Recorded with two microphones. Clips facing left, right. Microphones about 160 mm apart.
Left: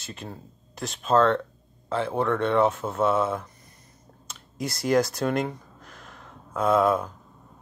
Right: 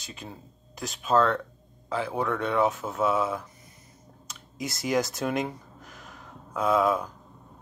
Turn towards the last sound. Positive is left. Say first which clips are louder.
# left 2 dB
turn(degrees=0)  # may be behind; listen again after turning